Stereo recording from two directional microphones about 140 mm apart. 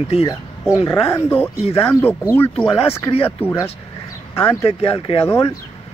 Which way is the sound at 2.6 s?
40° left (ahead or behind).